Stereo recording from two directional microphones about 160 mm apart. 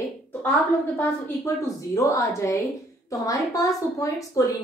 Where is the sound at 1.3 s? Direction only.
20° left (ahead or behind).